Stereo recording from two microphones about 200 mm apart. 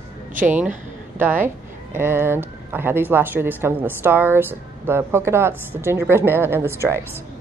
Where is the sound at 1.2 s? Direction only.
10° right (ahead or behind).